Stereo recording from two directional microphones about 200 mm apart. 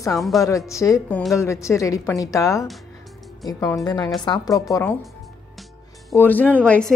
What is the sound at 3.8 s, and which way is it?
A woman's voice, 20° left (ahead or behind).